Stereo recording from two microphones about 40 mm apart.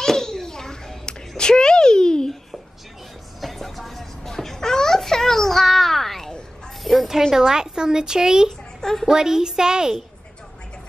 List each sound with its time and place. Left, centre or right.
0.0 s a sound: centre
3.3 s music: centre
6.8 s mechanisms: centre
7.3 s a woman's voice: centre